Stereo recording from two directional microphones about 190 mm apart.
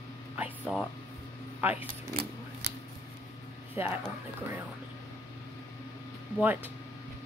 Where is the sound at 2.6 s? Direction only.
60° right (ahead or behind).